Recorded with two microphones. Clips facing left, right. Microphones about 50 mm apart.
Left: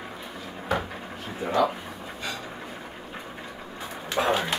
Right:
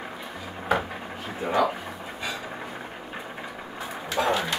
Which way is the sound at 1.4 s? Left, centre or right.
Centre.